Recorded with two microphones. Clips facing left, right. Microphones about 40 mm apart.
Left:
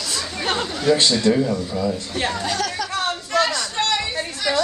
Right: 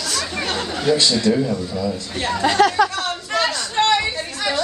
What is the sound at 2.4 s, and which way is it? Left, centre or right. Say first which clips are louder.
Speech: right 9 dB; right.